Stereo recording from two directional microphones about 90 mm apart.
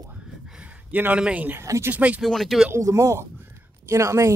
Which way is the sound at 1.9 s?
15° right (ahead or behind).